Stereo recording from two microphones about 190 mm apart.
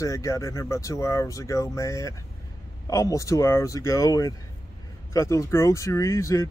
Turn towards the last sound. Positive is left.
turn(degrees=15)  # may be behind; listen again after turning